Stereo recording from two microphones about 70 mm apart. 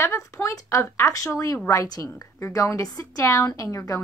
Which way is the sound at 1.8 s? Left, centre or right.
Left.